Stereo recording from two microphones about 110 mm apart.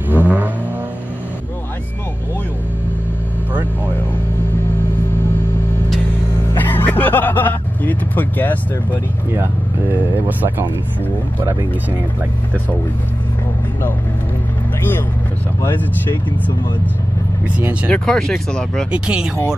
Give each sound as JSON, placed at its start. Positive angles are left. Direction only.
{"t": 0.1, "sound": "vehicle", "side_deg": -15}
{"t": 6.5, "sound": "vehicle", "side_deg": 20}
{"t": 9.3, "sound": "speech", "side_deg": -20}
{"t": 14.8, "sound": "speech", "side_deg": 20}
{"t": 17.8, "sound": "speech", "side_deg": 10}
{"t": 18.9, "sound": "speech", "side_deg": -10}